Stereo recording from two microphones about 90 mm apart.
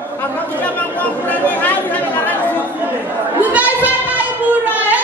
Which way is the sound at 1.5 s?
20° left (ahead or behind).